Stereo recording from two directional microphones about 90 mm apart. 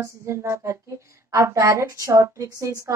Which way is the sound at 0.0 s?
35° right (ahead or behind).